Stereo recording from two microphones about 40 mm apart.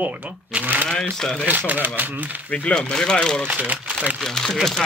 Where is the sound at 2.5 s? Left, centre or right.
Left.